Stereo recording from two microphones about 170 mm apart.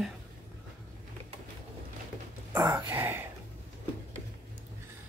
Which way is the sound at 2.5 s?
20° right (ahead or behind).